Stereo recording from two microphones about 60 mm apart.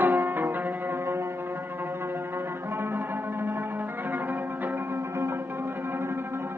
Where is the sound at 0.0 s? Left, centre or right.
Right.